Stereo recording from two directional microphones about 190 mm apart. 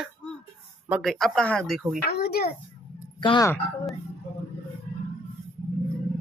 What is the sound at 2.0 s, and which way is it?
Speech, 55° left (ahead or behind).